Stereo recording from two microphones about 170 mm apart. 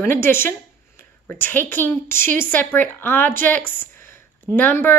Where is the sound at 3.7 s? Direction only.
10° left (ahead or behind).